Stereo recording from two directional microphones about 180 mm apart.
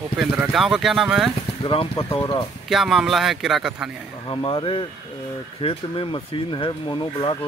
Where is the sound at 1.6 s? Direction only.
30° left (ahead or behind).